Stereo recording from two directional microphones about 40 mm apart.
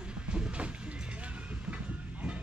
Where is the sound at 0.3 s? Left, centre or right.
Right.